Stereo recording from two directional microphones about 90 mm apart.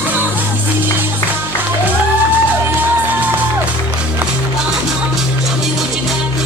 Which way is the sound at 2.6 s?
25° right (ahead or behind).